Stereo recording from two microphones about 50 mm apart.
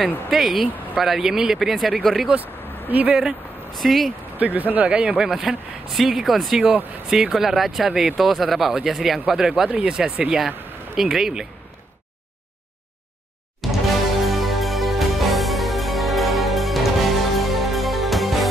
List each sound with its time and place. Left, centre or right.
0.0 s speech: centre
2.4 s a sound: right
3.7 s speech: centre
4.4 s speech: right
4.9 s a man's voice: centre
5.3 s speech: centre
13.6 s music: centre